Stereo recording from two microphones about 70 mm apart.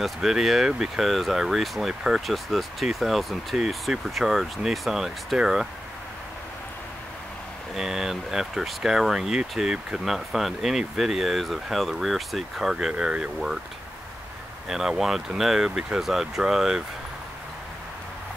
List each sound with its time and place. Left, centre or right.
0.0 s speech: centre
7.7 s speech: centre
14.7 s speech: centre